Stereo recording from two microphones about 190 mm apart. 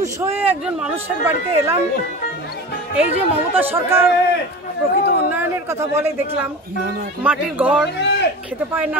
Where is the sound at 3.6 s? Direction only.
10° right (ahead or behind).